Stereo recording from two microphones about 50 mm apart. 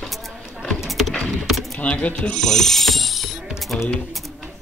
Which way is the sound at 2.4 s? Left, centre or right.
Centre.